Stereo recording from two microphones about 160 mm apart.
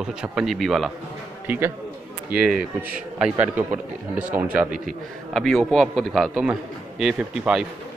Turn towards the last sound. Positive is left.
turn(degrees=-5)  # may be behind; listen again after turning